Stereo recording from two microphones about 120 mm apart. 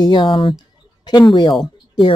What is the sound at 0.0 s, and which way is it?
Speech, 45° left (ahead or behind).